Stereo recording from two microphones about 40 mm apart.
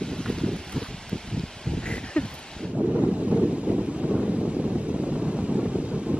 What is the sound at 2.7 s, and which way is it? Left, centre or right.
Wind noise, right.